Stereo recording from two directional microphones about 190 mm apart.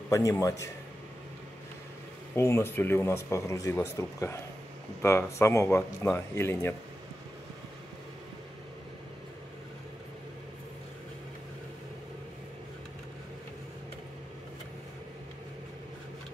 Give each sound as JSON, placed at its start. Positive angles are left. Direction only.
{"t": 0.1, "sound": "speech", "side_deg": 15}
{"t": 2.3, "sound": "speech", "side_deg": 10}